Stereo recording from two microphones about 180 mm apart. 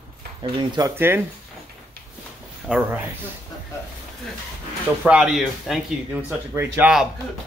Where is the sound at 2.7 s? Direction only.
10° right (ahead or behind).